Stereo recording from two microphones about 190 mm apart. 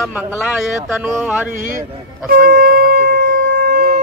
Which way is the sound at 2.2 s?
50° right (ahead or behind).